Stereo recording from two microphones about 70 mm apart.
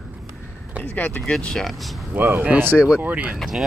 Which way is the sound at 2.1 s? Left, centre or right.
Right.